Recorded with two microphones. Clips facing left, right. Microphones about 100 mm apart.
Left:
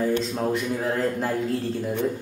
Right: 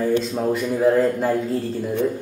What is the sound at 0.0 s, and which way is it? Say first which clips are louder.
Speech: right 3 dB; centre (ahead or behind).